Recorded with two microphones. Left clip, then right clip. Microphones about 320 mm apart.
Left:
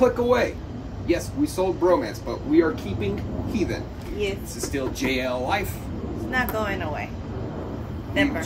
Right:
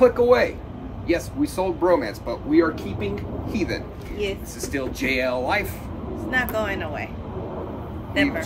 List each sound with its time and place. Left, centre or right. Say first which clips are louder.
0.0 s speech: right 4 dB; centre